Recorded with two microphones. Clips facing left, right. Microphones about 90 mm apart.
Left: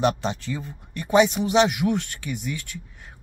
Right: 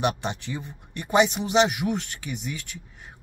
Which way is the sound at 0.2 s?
20° right (ahead or behind).